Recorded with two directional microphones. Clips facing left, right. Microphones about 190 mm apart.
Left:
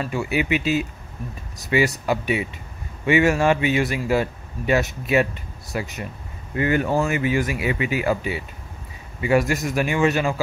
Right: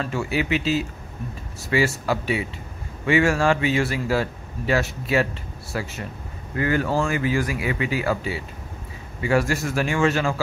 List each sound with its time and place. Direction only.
0.0 s a man's voice: 15° left (ahead or behind)